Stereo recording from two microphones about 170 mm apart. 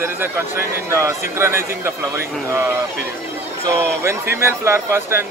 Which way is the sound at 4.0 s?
15° right (ahead or behind).